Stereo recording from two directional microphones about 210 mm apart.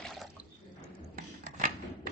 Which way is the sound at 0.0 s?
Centre (ahead or behind).